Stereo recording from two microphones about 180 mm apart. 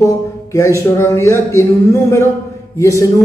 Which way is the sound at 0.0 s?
20° left (ahead or behind).